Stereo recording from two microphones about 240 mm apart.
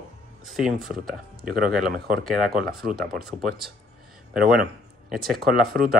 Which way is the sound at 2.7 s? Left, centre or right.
Right.